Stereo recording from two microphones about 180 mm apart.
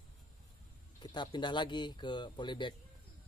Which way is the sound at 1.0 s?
25° left (ahead or behind).